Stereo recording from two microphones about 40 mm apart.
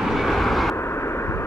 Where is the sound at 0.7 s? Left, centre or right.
Left.